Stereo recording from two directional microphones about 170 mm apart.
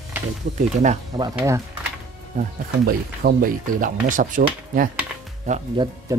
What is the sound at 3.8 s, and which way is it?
Speech, 50° right (ahead or behind).